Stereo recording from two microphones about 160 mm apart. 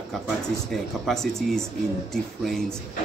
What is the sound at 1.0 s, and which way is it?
A man's voice, centre (ahead or behind).